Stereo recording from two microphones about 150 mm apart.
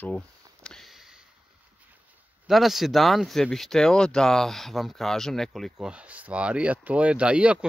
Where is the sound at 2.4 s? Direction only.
Centre (ahead or behind).